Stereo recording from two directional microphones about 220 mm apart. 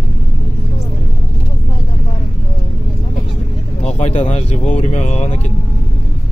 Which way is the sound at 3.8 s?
30° left (ahead or behind).